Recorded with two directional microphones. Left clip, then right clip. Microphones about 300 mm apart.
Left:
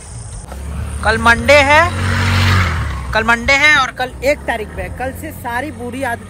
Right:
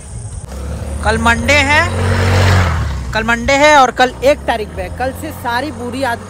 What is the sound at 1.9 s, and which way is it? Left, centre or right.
Vehicle, right.